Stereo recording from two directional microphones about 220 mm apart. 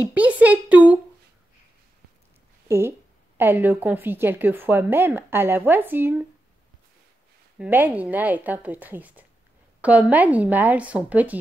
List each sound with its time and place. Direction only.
0.0 s a woman's voice: 5° right (ahead or behind)
3.3 s a woman's voice: 10° right (ahead or behind)
7.5 s a woman's voice: 5° right (ahead or behind)